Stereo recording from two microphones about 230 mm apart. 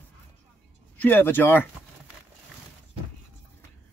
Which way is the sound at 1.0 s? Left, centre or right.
Centre.